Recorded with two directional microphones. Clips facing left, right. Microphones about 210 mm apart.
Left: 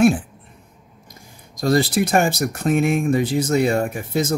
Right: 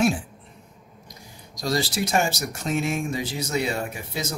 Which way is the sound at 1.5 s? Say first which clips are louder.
Left 8 dB; 55° left (ahead or behind).